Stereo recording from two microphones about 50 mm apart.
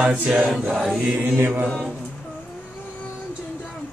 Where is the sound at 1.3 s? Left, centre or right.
Right.